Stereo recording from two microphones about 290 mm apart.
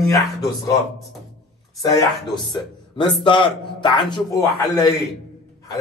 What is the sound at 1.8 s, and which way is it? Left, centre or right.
A man's voice, centre.